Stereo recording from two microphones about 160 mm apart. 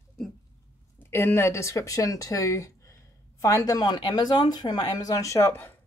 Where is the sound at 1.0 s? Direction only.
15° left (ahead or behind).